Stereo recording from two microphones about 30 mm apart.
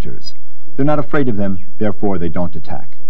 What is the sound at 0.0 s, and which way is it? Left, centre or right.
A man's voice, right.